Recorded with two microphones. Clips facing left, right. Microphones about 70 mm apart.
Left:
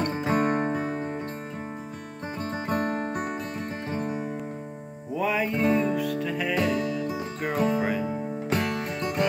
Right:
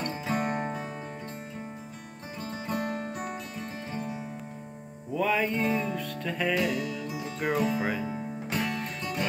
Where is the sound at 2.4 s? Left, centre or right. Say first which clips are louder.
Left 5 dB; left.